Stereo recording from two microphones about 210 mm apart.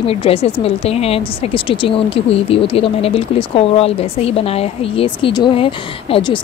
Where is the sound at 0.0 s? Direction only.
25° left (ahead or behind).